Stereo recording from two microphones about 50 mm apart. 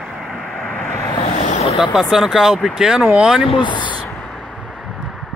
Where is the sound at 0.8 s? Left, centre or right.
Left.